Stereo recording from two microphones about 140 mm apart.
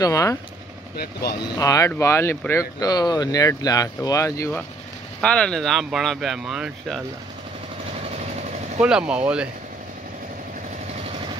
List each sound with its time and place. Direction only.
0.0 s speech: 25° left (ahead or behind)
1.4 s speech: 25° left (ahead or behind)
5.2 s speech: 5° left (ahead or behind)
8.8 s speech: 5° right (ahead or behind)